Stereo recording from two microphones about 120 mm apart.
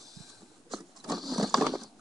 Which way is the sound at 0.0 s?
Centre (ahead or behind).